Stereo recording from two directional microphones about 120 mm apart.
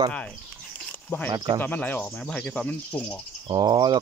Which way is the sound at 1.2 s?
40° right (ahead or behind).